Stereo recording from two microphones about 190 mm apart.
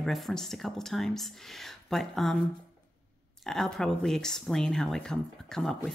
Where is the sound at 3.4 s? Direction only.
Centre (ahead or behind).